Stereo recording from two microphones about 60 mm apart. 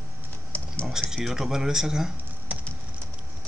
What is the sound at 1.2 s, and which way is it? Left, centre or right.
Speech, centre.